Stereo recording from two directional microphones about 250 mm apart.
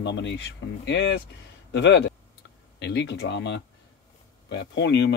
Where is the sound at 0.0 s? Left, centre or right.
Left.